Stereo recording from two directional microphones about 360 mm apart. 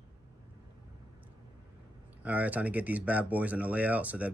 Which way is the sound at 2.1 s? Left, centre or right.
Centre.